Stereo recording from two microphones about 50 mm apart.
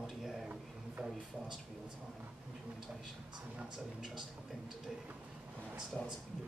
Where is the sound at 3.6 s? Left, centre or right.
Centre.